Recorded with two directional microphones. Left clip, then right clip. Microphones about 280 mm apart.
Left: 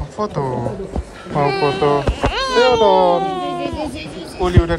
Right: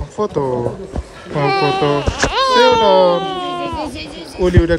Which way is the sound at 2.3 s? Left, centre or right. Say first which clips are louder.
Right 3 dB; right.